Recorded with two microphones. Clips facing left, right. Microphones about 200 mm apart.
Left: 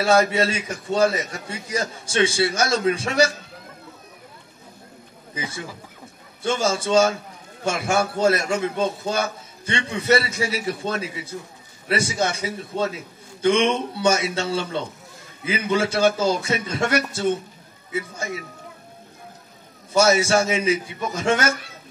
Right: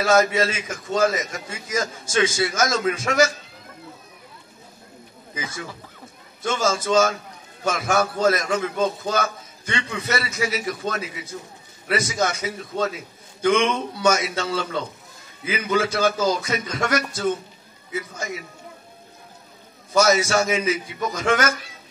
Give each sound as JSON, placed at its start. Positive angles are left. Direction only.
{"t": 0.0, "sound": "a man's voice", "side_deg": 30}
{"t": 6.4, "sound": "a man's voice", "side_deg": 30}
{"t": 19.9, "sound": "a man's voice", "side_deg": 30}